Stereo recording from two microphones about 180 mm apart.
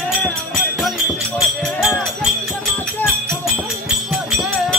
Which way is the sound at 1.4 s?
Centre (ahead or behind).